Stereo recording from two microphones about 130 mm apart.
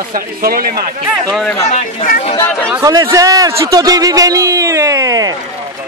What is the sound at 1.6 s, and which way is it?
Speech, 55° left (ahead or behind).